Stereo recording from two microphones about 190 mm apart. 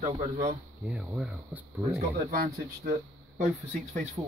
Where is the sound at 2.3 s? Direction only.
50° right (ahead or behind).